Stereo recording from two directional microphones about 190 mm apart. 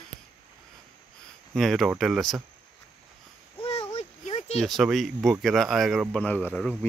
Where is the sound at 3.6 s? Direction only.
30° left (ahead or behind).